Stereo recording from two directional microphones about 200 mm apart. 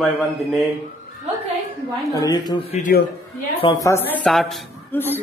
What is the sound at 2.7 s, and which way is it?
Speech, 40° left (ahead or behind).